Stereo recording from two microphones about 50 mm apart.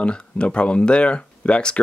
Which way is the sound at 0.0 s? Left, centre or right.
Left.